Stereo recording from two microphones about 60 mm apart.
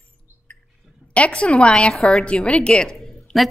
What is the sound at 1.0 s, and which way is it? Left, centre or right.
A woman's voice, left.